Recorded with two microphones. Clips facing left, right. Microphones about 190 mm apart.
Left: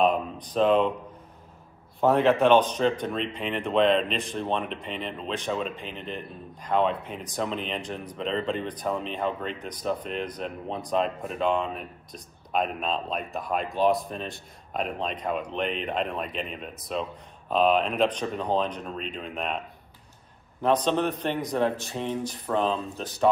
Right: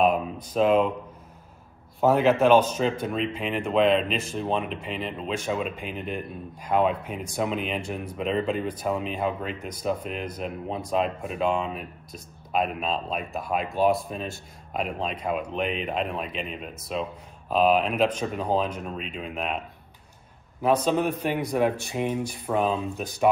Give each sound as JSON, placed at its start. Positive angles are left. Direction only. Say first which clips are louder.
{"t": 0.5, "sound": "a man's voice", "louder": "right 1 dB", "side_deg": -5}
{"t": 2.0, "sound": "a man's voice", "louder": "right 1 dB", "side_deg": -5}
{"t": 20.6, "sound": "speech", "louder": "right 1 dB", "side_deg": -10}